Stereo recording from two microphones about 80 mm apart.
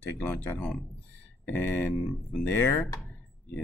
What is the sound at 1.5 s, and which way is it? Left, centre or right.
Speech, left.